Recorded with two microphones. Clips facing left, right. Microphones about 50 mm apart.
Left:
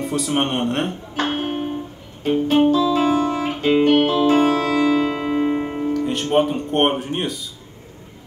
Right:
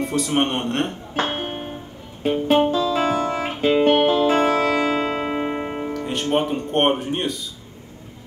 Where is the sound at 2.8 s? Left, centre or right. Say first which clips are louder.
Left 3 dB; centre.